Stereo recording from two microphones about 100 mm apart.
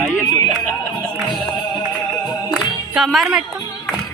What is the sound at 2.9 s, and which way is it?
Speech, centre (ahead or behind).